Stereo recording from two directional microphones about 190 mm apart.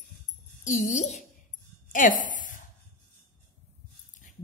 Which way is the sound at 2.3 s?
45° left (ahead or behind).